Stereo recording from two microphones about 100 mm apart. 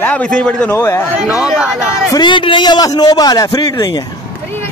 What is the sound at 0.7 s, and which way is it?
Speech, 25° left (ahead or behind).